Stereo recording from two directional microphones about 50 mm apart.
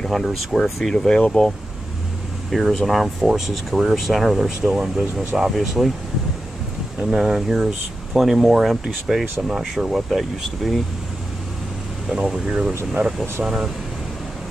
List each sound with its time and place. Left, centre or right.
0.0 s speech: centre
2.5 s speech: centre
4.6 s speech: centre
5.5 s speech: centre
7.0 s speech: centre
12.1 s speech: centre